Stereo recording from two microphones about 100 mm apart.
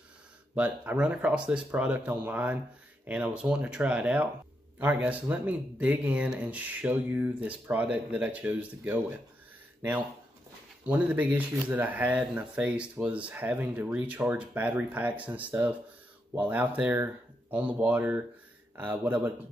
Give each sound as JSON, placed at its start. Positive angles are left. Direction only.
{"t": 0.6, "sound": "speech", "side_deg": -15}